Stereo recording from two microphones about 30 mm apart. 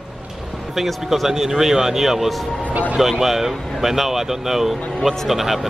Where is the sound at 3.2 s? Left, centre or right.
Centre.